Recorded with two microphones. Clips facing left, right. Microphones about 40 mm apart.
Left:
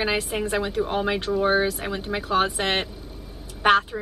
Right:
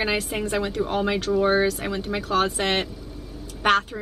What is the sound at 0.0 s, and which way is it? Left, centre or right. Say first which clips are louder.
A woman's voice: even; centre.